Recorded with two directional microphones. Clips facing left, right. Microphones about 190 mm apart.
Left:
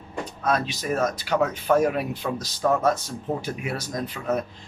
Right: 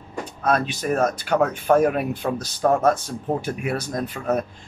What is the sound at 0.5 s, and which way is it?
A man's voice, 55° right (ahead or behind).